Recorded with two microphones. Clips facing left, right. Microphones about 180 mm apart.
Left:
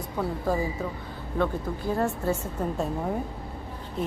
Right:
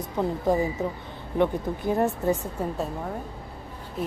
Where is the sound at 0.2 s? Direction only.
20° right (ahead or behind).